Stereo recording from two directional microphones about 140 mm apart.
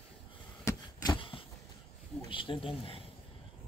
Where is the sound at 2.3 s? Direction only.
40° left (ahead or behind).